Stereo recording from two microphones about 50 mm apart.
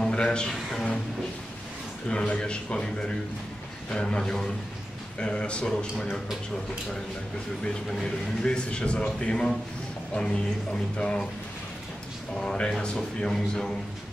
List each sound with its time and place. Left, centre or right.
0.0 s music: centre
0.5 s speech: centre
2.0 s speech: centre
7.6 s speech: centre
12.4 s speech: centre